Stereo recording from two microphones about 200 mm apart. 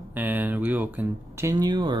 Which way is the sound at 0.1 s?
10° right (ahead or behind).